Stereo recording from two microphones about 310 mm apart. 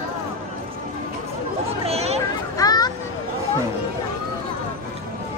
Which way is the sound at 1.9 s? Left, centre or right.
Centre.